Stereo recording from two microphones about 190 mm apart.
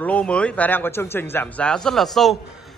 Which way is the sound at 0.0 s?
5° left (ahead or behind).